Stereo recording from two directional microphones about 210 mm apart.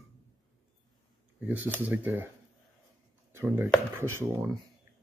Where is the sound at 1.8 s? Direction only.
5° right (ahead or behind).